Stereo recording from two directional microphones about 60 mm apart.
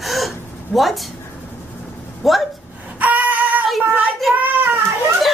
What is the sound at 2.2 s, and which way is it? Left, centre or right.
Speech, centre.